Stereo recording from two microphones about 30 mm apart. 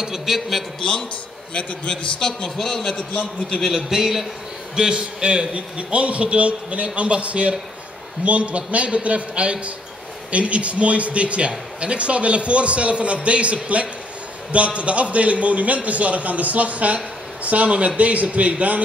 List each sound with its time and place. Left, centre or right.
0.0 s a man's voice: centre
1.5 s a man's voice: left
2.1 s a man's voice: left
2.5 s a man's voice: centre
3.0 s a man's voice: left
3.7 s a man's voice: centre
4.7 s a man's voice: right